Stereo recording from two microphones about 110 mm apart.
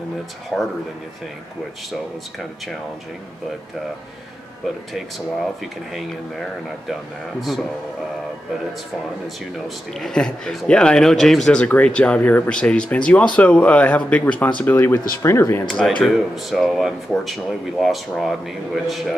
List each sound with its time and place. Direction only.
0.5 s speech: 5° left (ahead or behind)
6.9 s speech: centre (ahead or behind)
9.9 s speech: 5° left (ahead or behind); by 15.6 s 25° left (ahead or behind)
16.0 s speech: centre (ahead or behind)